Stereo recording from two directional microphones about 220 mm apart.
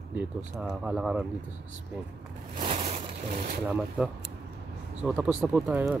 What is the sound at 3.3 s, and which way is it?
Speech, 40° right (ahead or behind).